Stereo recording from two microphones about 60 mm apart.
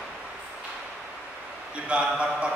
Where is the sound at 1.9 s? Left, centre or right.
Centre.